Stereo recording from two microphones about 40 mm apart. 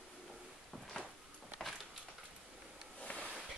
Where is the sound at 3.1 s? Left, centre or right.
Left.